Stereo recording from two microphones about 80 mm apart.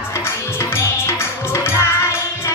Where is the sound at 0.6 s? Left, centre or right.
Left.